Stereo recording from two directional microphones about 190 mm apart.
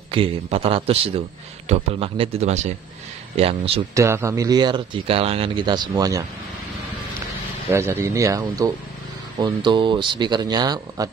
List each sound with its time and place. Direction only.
0.1 s a man's voice: 30° right (ahead or behind)
3.9 s speech: 15° right (ahead or behind)
7.7 s speech: 15° right (ahead or behind)